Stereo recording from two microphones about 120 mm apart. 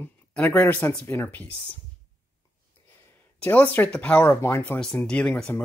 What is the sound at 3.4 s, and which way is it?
Speech, 15° left (ahead or behind).